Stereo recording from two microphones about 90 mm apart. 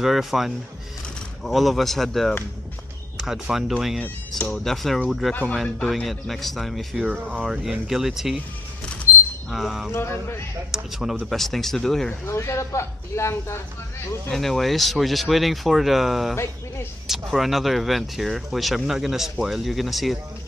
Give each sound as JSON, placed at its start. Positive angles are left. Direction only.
{"t": 0.0, "sound": "speech", "side_deg": -5}
{"t": 5.5, "sound": "speech", "side_deg": 5}
{"t": 7.1, "sound": "speech", "side_deg": -15}
{"t": 9.5, "sound": "speech", "side_deg": 0}
{"t": 9.9, "sound": "speech", "side_deg": 25}
{"t": 10.7, "sound": "speech", "side_deg": -5}
{"t": 12.3, "sound": "speech", "side_deg": 30}
{"t": 14.3, "sound": "speech", "side_deg": 5}